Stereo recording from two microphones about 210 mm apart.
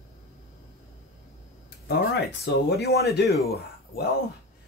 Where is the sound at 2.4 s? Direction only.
50° left (ahead or behind).